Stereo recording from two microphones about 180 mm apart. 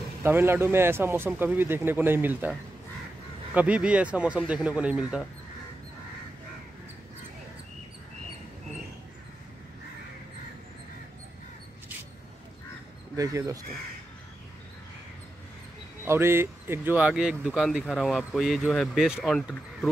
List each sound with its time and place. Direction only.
0.2 s speech: 15° right (ahead or behind)
3.5 s speech: 5° right (ahead or behind)
13.1 s speech: 20° right (ahead or behind)
16.1 s speech: 15° right (ahead or behind); by 19.9 s 5° left (ahead or behind)